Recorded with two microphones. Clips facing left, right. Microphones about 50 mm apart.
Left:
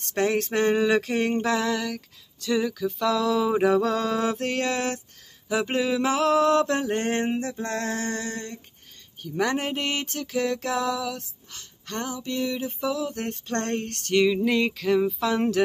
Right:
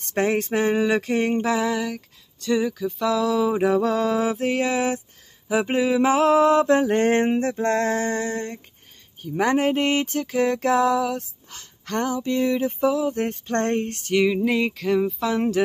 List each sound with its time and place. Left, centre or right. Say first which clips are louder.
0.1 s a sound: right 2 dB; centre
5.5 s speech: right 4 dB; centre
6.1 s speech: right 3 dB; right; by 15.6 s centre